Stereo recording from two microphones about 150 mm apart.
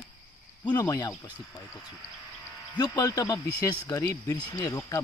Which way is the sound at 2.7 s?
30° left (ahead or behind).